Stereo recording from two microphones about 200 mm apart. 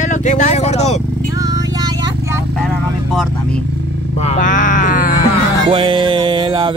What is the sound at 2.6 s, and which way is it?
Speech, centre (ahead or behind).